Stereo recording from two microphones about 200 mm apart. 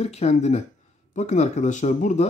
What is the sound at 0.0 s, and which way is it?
Speech, 30° left (ahead or behind).